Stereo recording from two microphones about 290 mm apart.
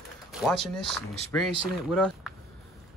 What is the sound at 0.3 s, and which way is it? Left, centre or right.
Speech, centre.